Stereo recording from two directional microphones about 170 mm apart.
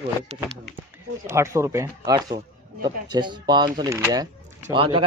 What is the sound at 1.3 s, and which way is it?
A man's voice, 15° right (ahead or behind).